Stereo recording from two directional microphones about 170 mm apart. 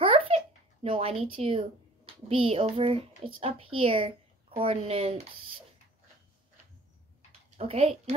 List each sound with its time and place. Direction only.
0.0 s babbling: 30° right (ahead or behind)
0.8 s a woman's voice: 35° right (ahead or behind)
7.5 s speech: 35° right (ahead or behind)